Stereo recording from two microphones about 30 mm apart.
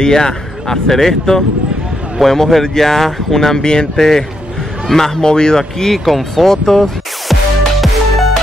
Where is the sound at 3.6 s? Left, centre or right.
Left.